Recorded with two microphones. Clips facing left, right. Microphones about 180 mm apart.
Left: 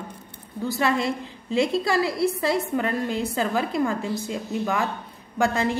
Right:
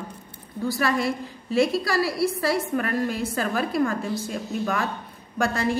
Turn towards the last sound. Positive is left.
turn(degrees=20)  # may be behind; listen again after turning